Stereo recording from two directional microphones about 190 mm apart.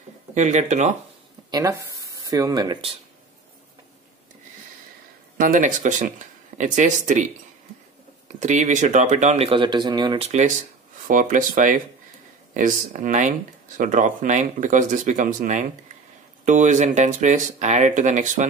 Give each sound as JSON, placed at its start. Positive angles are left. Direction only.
{"t": 0.3, "sound": "speech", "side_deg": -40}
{"t": 1.5, "sound": "speech", "side_deg": -15}
{"t": 5.4, "sound": "speech", "side_deg": -45}
{"t": 8.4, "sound": "speech", "side_deg": -40}